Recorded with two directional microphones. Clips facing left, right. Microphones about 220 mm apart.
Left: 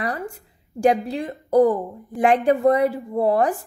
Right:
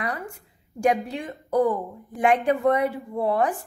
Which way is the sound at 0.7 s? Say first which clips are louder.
Left 4 dB; 35° left (ahead or behind).